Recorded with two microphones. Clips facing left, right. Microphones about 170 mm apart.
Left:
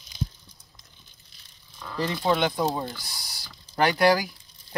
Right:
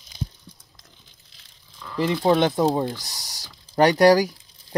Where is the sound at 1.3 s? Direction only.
90° right.